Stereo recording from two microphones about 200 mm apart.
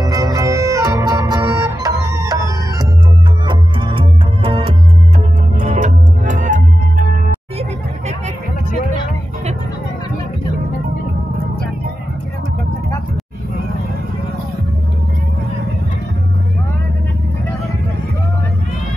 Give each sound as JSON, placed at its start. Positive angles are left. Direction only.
{"t": 0.0, "sound": "music", "side_deg": -15}
{"t": 3.4, "sound": "music", "side_deg": -25}
{"t": 5.6, "sound": "music", "side_deg": -35}